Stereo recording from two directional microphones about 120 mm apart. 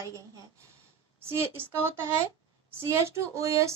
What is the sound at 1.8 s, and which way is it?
A woman's voice, 20° right (ahead or behind).